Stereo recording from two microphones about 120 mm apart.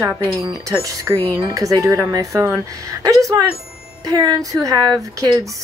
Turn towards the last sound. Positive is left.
turn(degrees=-30)  # may be behind; listen again after turning